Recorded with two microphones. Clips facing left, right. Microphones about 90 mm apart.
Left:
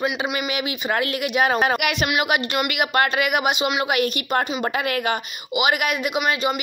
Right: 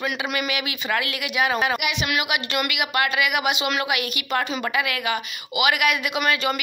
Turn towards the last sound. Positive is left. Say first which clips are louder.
# even
turn(degrees=25)  # may be behind; listen again after turning